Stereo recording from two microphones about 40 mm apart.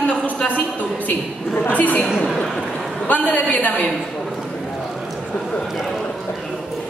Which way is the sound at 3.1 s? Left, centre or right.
Left.